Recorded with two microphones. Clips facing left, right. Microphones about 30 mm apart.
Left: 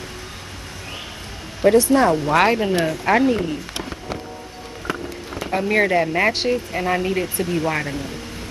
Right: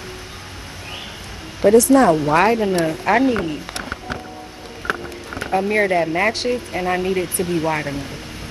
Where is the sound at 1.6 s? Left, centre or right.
Centre.